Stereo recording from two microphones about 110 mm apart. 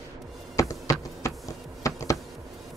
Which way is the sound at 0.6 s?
30° left (ahead or behind).